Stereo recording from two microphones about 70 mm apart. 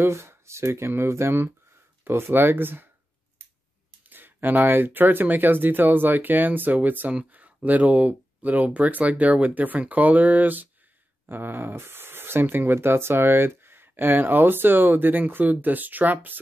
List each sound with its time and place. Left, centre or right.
0.0 s speech: right
4.1 s speech: right